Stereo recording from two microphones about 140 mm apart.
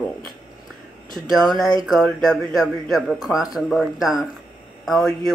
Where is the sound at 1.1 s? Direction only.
Centre (ahead or behind).